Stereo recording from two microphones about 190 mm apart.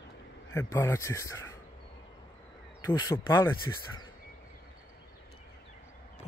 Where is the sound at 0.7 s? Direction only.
15° left (ahead or behind).